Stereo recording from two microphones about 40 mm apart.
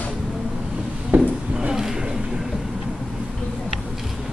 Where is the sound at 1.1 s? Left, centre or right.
Right.